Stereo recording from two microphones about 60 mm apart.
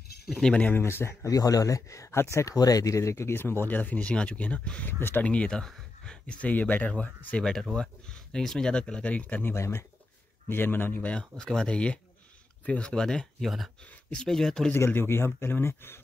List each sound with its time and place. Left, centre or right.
0.4 s speech: centre
0.7 s speech: left
1.2 s speech: left
2.3 s speech: left; by 5.6 s centre
5.6 s speech: centre
6.2 s speech: left
9.4 s speech: left
11.1 s speech: centre
14.9 s speech: left